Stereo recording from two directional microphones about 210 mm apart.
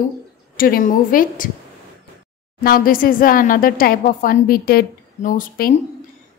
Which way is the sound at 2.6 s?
40° left (ahead or behind).